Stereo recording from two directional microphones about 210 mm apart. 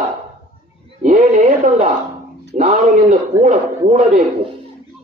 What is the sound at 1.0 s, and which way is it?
Speech, 35° right (ahead or behind).